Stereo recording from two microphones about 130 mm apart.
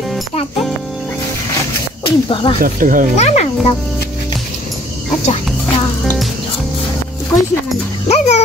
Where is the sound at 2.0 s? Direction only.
40° left (ahead or behind).